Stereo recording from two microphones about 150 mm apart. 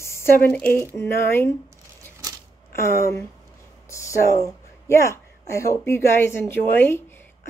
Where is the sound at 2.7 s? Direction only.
20° left (ahead or behind).